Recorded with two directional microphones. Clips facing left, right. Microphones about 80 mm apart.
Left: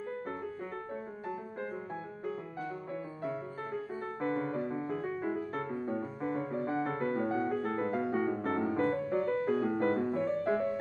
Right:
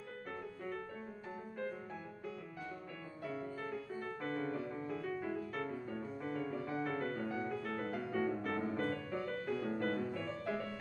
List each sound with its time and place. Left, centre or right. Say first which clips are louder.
3.3 s music: left 3 dB; left